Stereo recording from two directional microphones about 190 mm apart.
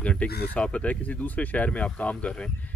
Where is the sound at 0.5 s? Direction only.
5° left (ahead or behind).